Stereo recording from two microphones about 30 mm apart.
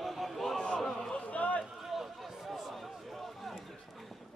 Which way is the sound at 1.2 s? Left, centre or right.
Left.